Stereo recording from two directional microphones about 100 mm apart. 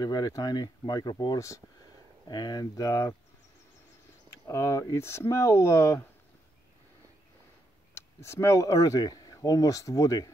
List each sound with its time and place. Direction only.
0.0 s speech: 45° left (ahead or behind)
2.6 s speech: 35° left (ahead or behind)
4.5 s speech: 30° left (ahead or behind)
7.9 s speech: 25° left (ahead or behind)